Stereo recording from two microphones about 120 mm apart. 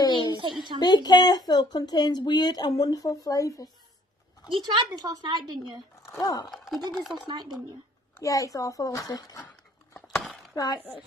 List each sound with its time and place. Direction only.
0.0 s a sound: 35° left (ahead or behind)
0.4 s a woman's voice: 40° right (ahead or behind)
0.7 s speech: 35° left (ahead or behind)
4.5 s a woman's voice: 40° right (ahead or behind)
6.0 s speech: 25° left (ahead or behind)
6.5 s speech: centre (ahead or behind)
7.2 s a woman's voice: 35° right (ahead or behind)
8.2 s a child's voice: 30° left (ahead or behind)
10.1 s a sound: centre (ahead or behind)
10.5 s speech: 30° left (ahead or behind)